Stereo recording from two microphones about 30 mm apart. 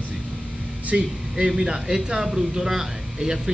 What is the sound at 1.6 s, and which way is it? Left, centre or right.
A man's voice, centre.